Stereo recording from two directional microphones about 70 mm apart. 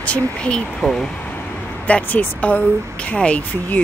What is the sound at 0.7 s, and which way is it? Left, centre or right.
Speech, centre.